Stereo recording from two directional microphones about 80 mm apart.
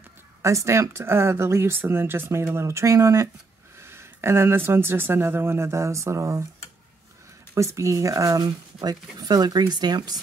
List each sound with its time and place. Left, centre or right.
0.4 s speech: right
7.5 s speech: right